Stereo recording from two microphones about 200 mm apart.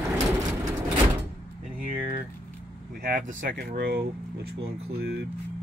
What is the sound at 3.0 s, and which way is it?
Speech, 45° right (ahead or behind).